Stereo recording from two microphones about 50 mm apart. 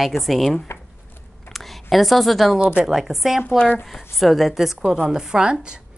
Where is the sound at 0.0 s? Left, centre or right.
Centre.